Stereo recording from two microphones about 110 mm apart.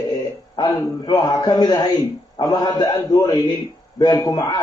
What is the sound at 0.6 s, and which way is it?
A man's voice, 35° left (ahead or behind).